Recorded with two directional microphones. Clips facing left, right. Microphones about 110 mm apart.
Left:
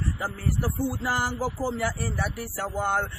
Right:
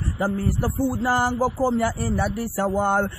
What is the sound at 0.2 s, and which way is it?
Speech, 35° right (ahead or behind).